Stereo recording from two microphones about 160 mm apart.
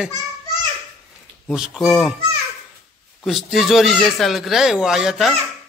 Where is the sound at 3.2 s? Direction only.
Centre (ahead or behind).